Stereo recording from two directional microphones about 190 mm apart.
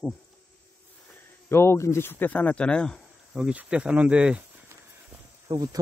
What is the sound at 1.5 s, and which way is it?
Speech, 15° left (ahead or behind).